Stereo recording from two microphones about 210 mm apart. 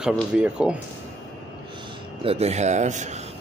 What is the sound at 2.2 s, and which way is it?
A man's voice, 30° right (ahead or behind).